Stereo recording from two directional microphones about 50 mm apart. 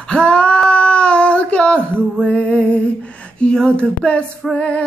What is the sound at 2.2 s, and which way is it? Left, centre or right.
Music, left.